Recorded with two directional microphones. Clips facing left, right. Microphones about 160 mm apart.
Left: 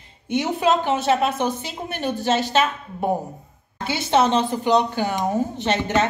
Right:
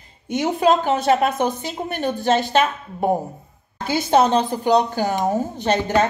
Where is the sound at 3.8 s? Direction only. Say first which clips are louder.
Right 2 dB; 40° right (ahead or behind).